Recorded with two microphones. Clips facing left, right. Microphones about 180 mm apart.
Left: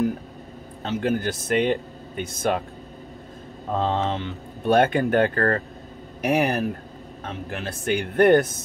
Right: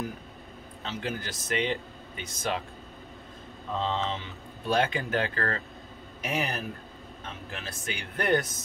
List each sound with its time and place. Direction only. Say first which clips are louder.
0.8 s speech: left 11 dB; 55° left (ahead or behind)
3.7 s speech: left 6 dB; 55° left (ahead or behind)